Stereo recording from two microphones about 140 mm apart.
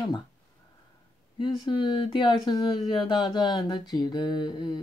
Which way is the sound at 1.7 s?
35° left (ahead or behind).